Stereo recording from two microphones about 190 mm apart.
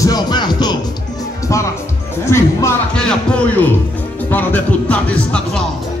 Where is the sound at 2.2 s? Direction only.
15° left (ahead or behind).